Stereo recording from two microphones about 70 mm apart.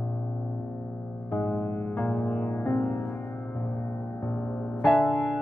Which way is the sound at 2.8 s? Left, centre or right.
Left.